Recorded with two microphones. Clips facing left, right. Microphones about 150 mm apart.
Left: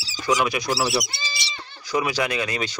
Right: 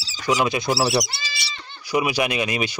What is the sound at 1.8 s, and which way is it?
Speech, 15° right (ahead or behind).